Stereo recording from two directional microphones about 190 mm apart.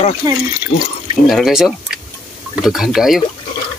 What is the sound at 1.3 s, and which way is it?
Speech, centre (ahead or behind).